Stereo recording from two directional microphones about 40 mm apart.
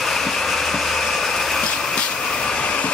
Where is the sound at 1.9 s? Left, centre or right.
Left.